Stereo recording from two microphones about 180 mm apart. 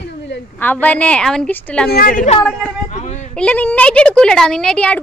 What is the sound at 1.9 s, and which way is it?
Speech, 55° left (ahead or behind).